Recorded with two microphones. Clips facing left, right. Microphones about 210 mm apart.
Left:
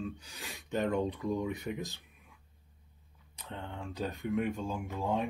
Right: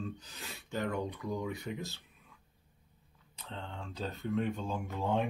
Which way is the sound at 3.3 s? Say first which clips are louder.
Left 2 dB; 15° left (ahead or behind).